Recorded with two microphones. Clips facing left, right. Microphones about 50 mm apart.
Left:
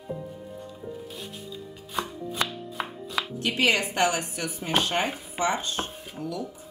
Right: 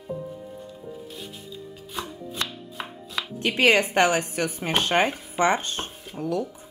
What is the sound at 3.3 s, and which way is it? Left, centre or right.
Speech, right.